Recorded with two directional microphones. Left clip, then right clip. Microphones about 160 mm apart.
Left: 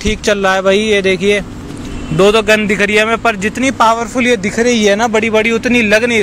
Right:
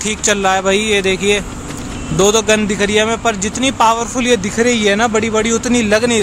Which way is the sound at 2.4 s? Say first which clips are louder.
Left 3 dB; 5° left (ahead or behind).